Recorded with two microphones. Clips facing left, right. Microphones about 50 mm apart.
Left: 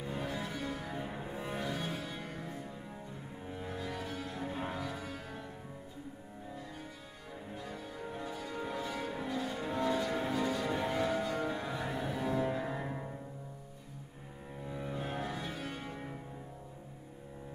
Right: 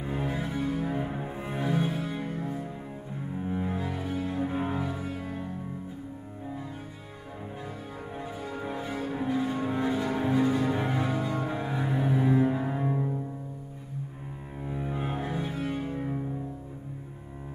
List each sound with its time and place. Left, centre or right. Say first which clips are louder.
0.0 s cello: right 6 dB; right
8.1 s music: right 5 dB; right
14.7 s cello: right 6 dB; right